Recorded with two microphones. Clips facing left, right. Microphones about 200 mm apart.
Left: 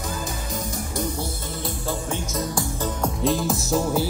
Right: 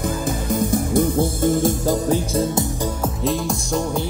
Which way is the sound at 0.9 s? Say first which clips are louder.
Right 9 dB; 50° right (ahead or behind).